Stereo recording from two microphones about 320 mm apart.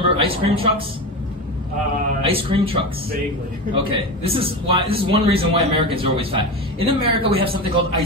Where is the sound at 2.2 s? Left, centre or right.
Centre.